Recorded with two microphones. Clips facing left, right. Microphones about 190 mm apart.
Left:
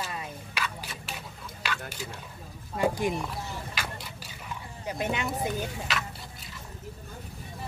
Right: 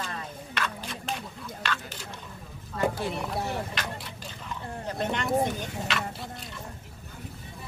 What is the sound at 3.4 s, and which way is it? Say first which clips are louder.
Speech: right 7 dB; 65° right (ahead or behind).